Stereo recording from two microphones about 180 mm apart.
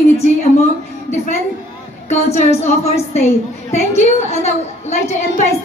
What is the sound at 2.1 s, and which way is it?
A woman's voice, 40° left (ahead or behind).